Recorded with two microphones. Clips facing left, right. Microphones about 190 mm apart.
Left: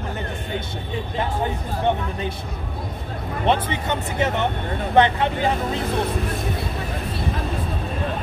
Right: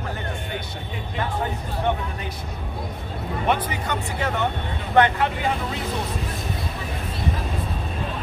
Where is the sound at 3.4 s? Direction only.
25° left (ahead or behind).